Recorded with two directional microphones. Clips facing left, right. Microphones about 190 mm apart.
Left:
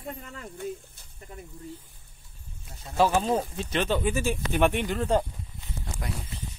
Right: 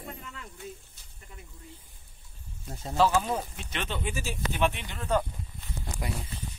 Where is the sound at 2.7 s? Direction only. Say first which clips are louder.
Right 7 dB; 50° right (ahead or behind).